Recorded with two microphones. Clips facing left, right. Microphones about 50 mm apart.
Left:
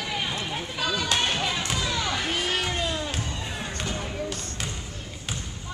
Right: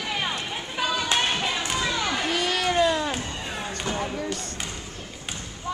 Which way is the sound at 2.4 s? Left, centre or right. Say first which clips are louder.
Right 5 dB; right.